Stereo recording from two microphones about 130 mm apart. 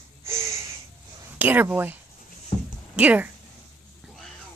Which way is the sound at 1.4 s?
15° right (ahead or behind).